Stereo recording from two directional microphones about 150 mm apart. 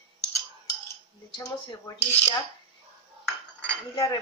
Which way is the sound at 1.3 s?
25° left (ahead or behind).